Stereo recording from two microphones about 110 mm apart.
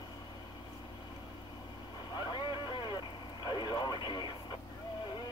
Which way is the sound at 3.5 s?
40° left (ahead or behind).